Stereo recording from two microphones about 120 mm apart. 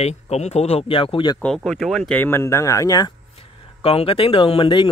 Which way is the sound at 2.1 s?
15° left (ahead or behind).